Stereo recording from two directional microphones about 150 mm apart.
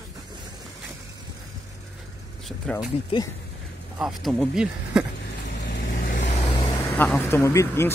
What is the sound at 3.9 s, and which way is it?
Speech, 5° right (ahead or behind).